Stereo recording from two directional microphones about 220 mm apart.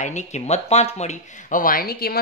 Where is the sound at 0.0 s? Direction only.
35° left (ahead or behind).